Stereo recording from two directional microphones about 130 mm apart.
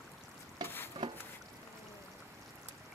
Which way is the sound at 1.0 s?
40° right (ahead or behind).